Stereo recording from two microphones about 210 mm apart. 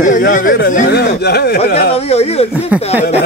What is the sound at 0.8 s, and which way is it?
Speech, 55° left (ahead or behind).